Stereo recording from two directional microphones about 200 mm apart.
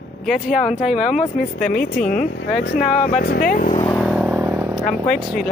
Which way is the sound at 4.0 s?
Centre (ahead or behind).